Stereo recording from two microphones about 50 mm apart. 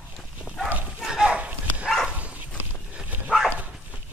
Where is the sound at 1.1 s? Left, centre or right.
Right.